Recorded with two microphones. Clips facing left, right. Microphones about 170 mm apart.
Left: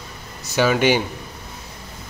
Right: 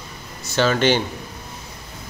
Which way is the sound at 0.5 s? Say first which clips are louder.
Left 1 dB; 10° left (ahead or behind).